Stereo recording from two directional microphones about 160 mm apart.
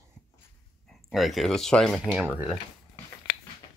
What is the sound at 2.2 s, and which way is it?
Speech, 10° right (ahead or behind).